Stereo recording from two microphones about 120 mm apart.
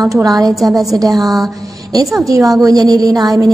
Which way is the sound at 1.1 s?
Centre (ahead or behind).